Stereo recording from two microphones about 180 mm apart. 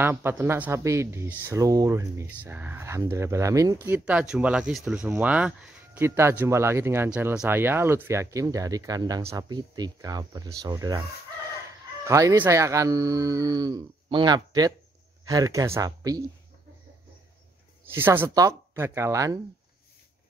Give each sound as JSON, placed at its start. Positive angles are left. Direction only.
{"t": 0.0, "sound": "speech", "side_deg": -10}
{"t": 12.0, "sound": "speech", "side_deg": -20}
{"t": 17.9, "sound": "speech", "side_deg": -10}